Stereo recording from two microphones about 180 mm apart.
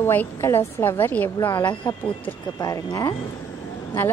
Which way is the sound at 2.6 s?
20° left (ahead or behind).